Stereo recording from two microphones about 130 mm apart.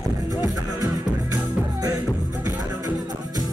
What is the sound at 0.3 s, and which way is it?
Music, 25° right (ahead or behind).